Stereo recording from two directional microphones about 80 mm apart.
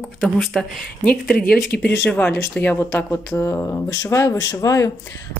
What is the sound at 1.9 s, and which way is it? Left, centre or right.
Speech, left.